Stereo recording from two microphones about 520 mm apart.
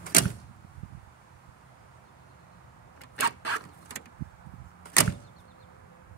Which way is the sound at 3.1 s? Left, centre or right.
Left.